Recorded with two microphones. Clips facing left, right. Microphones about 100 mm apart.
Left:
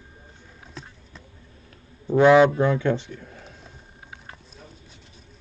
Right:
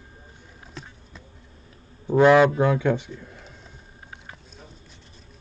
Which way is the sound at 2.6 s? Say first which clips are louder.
Even; 10° right (ahead or behind).